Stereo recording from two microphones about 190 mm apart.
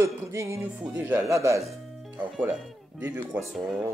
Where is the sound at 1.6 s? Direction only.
Centre (ahead or behind).